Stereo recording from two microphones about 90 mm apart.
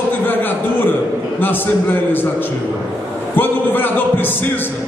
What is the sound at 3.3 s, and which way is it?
Speech, 20° left (ahead or behind).